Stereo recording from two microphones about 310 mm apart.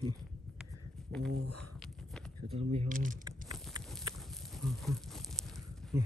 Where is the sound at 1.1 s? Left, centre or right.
Centre.